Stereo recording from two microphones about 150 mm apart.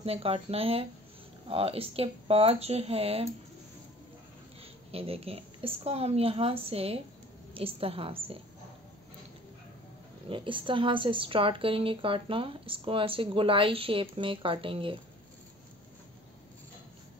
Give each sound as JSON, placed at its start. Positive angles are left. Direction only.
{"t": 0.0, "sound": "a woman's voice", "side_deg": -40}
{"t": 4.6, "sound": "a woman's voice", "side_deg": -40}
{"t": 10.2, "sound": "a woman's voice", "side_deg": -35}